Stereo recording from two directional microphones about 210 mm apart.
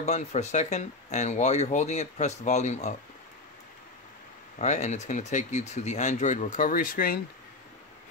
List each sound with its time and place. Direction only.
0.0 s speech: 30° left (ahead or behind)
4.6 s speech: 35° left (ahead or behind)